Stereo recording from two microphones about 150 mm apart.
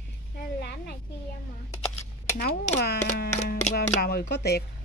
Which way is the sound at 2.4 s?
90° left.